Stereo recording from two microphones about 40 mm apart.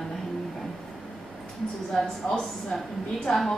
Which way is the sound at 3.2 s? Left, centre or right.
Centre.